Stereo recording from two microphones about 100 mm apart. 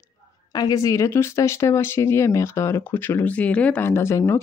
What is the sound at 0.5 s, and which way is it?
Speech, 40° left (ahead or behind).